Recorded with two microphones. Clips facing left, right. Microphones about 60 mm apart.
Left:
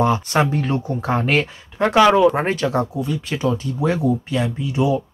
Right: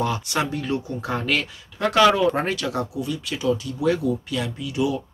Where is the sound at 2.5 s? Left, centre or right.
Left.